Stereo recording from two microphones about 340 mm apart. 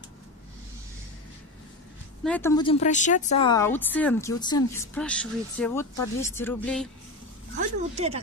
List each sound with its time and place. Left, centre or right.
2.2 s a woman's voice: centre
7.9 s speech: centre